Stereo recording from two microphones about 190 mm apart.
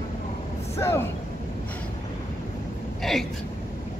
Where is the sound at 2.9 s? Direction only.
Centre (ahead or behind).